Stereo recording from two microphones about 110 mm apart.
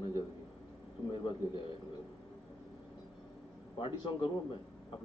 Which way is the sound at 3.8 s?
45° left (ahead or behind).